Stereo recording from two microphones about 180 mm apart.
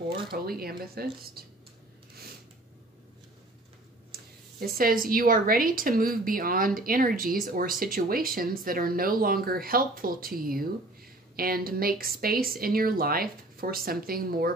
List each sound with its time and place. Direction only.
0.3 s speech: 55° right (ahead or behind)
4.1 s speech: 55° right (ahead or behind)